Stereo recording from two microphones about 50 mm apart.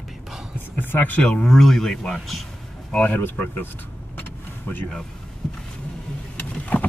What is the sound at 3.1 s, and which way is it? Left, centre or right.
Speech, left.